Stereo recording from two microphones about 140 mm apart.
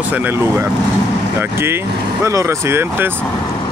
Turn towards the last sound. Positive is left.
turn(degrees=-15)  # may be behind; listen again after turning